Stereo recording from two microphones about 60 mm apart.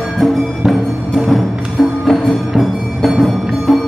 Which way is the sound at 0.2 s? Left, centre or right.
Centre.